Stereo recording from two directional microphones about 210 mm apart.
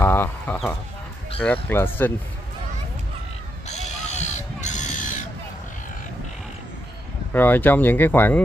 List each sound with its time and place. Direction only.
0.0 s speech: 10° left (ahead or behind)
3.6 s crow: 30° left (ahead or behind)
7.3 s speech: 10° left (ahead or behind)